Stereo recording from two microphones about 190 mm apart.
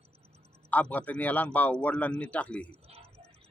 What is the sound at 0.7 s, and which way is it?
Speech, 10° left (ahead or behind).